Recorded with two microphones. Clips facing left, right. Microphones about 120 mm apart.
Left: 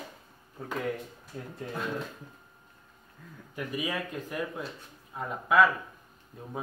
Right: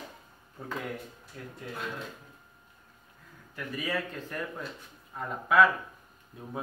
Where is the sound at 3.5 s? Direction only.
15° left (ahead or behind).